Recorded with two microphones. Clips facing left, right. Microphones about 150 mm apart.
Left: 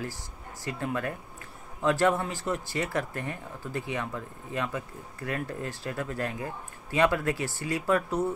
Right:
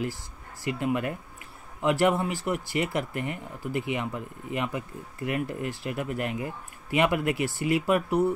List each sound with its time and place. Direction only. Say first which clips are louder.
0.7 s speech: right 4 dB; 15° right (ahead or behind)